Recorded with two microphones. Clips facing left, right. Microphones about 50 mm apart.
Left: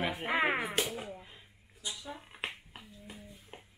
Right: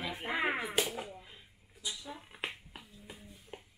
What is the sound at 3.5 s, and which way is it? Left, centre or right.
Music, centre.